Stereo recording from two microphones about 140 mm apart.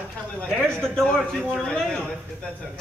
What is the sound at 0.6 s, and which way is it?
A man's voice, 5° left (ahead or behind).